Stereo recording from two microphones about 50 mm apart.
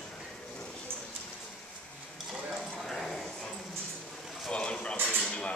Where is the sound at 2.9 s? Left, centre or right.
Centre.